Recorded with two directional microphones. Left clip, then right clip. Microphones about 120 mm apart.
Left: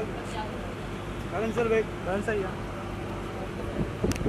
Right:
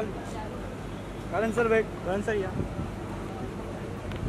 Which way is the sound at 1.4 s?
45° right (ahead or behind).